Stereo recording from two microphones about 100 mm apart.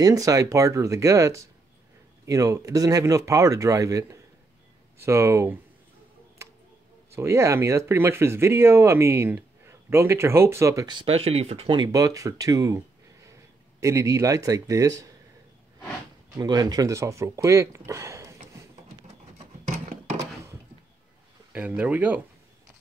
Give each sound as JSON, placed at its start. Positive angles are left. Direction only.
{"t": 0.0, "sound": "speech", "side_deg": -35}
{"t": 7.1, "sound": "speech", "side_deg": -25}
{"t": 11.1, "sound": "speech", "side_deg": -90}
{"t": 11.7, "sound": "speech", "side_deg": -40}
{"t": 16.3, "sound": "speech", "side_deg": -40}
{"t": 21.5, "sound": "speech", "side_deg": -15}